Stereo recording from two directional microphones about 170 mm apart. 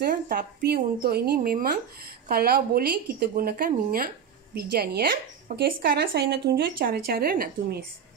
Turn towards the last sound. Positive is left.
turn(degrees=-60)  # may be behind; listen again after turning